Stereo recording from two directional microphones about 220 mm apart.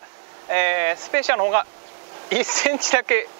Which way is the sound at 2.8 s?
15° right (ahead or behind).